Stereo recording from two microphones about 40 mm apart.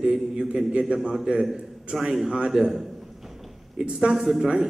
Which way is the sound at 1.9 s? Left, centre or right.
Right.